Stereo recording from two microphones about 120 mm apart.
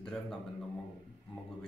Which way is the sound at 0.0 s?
5° left (ahead or behind).